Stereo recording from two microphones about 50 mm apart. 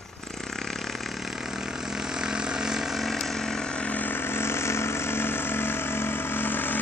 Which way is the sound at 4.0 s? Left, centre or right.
Left.